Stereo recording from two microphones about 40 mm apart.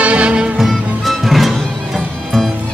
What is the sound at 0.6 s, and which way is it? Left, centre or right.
Music, centre.